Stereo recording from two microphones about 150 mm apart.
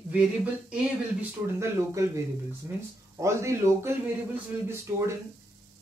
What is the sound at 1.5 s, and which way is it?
Speech, 20° right (ahead or behind).